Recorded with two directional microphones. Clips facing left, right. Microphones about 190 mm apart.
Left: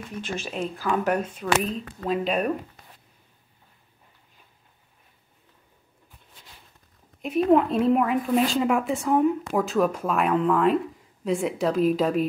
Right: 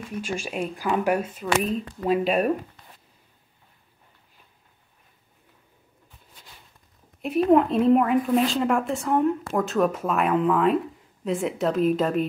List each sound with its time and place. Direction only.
0.2 s a woman's voice: 10° right (ahead or behind)
7.2 s a woman's voice: centre (ahead or behind)